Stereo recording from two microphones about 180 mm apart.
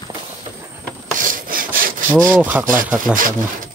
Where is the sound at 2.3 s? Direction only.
10° right (ahead or behind).